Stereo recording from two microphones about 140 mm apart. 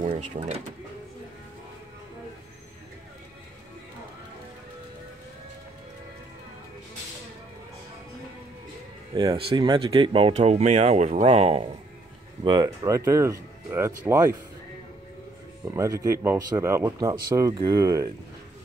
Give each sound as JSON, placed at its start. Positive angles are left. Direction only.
{"t": 0.1, "sound": "speech", "side_deg": -35}
{"t": 9.1, "sound": "speech", "side_deg": -30}
{"t": 12.4, "sound": "speech", "side_deg": -25}
{"t": 15.6, "sound": "speech", "side_deg": -20}